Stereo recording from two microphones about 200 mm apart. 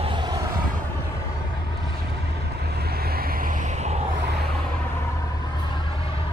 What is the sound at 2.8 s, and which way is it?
Vehicle, 50° right (ahead or behind).